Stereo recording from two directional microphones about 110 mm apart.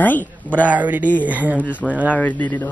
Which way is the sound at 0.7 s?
15° right (ahead or behind).